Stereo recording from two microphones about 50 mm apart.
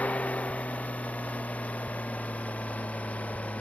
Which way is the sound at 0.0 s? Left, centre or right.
Left.